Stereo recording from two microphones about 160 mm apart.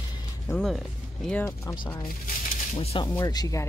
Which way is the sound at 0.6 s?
Centre (ahead or behind).